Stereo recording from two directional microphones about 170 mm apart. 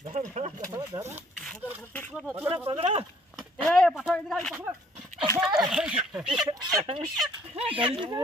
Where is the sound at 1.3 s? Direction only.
Centre (ahead or behind).